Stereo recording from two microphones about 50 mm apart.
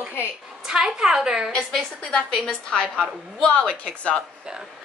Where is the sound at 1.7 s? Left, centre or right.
Centre.